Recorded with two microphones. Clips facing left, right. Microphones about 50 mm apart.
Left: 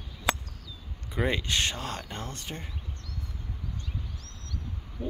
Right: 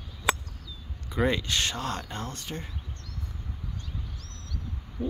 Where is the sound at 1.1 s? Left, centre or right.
Centre.